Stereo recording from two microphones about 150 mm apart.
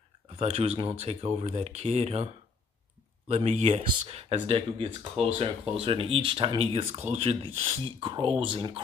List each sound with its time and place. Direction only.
0.4 s speech: 45° right (ahead or behind)
3.3 s speech: 45° right (ahead or behind)